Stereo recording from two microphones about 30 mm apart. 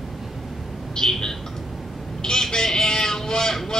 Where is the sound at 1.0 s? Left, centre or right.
Centre.